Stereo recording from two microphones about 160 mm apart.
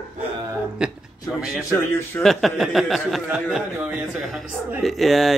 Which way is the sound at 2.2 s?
Centre (ahead or behind).